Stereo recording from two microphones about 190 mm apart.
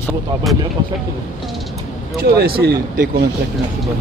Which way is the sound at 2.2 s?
55° right (ahead or behind).